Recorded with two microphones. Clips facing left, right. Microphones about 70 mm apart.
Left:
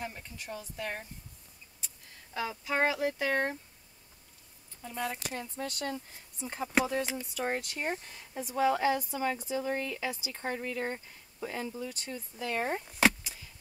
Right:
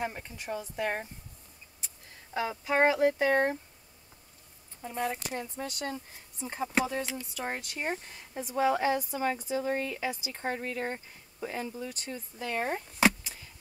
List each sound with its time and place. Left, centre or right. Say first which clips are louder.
0.0 s speech: right 5 dB; right
2.5 s speech: right 5 dB; right
4.8 s speech: right 3 dB; right; by 12.8 s centre
13.0 s a sound: right 1 dB; centre